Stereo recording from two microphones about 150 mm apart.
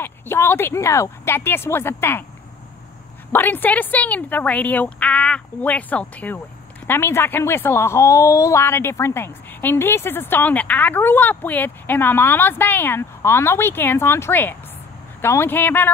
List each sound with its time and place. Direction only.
0.0 s speech: 15° left (ahead or behind)
3.3 s speech: 10° left (ahead or behind)